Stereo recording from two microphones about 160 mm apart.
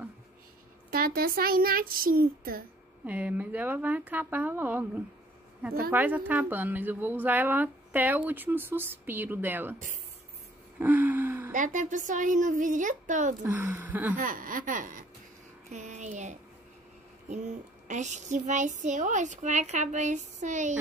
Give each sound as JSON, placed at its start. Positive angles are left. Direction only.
{"t": 0.8, "sound": "a child's voice", "side_deg": -70}
{"t": 3.1, "sound": "a woman's voice", "side_deg": -10}
{"t": 10.8, "sound": "gasp", "side_deg": -10}
{"t": 11.5, "sound": "a woman's voice", "side_deg": -50}
{"t": 13.4, "sound": "a woman's voice", "side_deg": -10}
{"t": 14.1, "sound": "speech", "side_deg": -60}
{"t": 15.7, "sound": "a sound", "side_deg": -50}
{"t": 17.3, "sound": "a woman's voice", "side_deg": -50}